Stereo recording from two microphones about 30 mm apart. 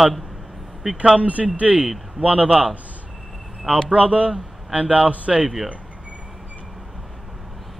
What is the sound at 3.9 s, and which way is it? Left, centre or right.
A man's voice, right.